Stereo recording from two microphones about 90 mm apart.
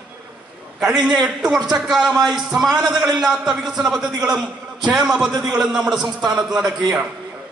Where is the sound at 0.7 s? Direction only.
10° right (ahead or behind).